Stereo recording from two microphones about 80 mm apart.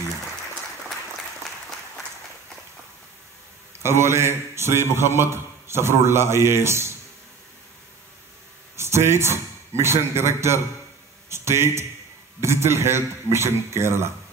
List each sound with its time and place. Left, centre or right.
3.8 s a man's voice: right
8.7 s a man's voice: right